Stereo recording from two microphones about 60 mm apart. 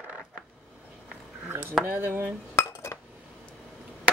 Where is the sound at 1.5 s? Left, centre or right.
Right.